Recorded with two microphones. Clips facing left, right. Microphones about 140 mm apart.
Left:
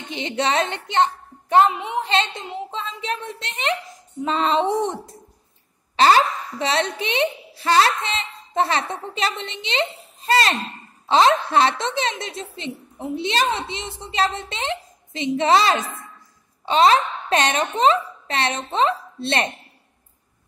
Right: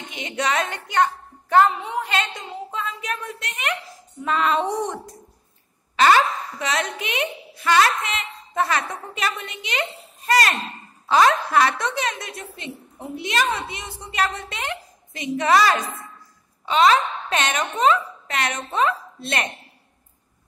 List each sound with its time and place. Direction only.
0.1 s a woman's voice: 30° left (ahead or behind)